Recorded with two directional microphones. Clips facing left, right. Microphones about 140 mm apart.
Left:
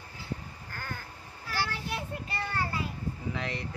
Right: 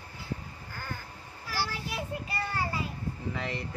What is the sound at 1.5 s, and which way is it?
Child singing, 5° right (ahead or behind).